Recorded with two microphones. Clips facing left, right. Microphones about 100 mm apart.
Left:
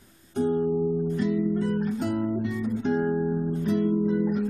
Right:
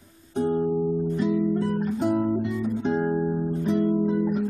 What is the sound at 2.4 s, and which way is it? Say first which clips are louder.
Guitar: right 1 dB; 5° right (ahead or behind).